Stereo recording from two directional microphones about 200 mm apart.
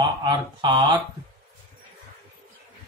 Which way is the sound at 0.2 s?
20° right (ahead or behind).